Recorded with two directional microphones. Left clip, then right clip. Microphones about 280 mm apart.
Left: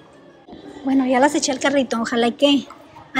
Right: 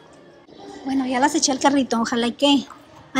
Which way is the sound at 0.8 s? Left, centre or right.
Centre.